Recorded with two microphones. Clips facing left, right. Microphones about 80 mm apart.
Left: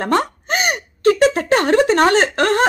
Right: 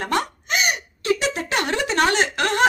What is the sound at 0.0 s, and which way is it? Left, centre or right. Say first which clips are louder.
Speech: left 6 dB; left.